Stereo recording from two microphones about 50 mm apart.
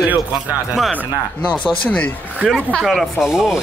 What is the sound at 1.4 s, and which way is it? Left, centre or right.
Speech, left.